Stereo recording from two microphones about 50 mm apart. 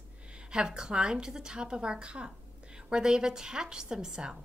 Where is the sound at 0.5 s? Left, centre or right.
Centre.